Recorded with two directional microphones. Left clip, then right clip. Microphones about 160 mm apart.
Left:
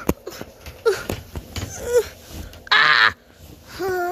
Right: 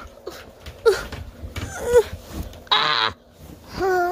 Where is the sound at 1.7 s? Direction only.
20° right (ahead or behind).